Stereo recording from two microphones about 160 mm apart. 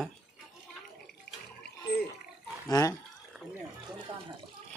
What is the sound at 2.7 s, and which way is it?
Speech, 20° left (ahead or behind).